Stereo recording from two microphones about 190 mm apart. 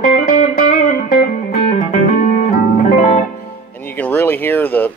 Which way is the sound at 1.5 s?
45° left (ahead or behind).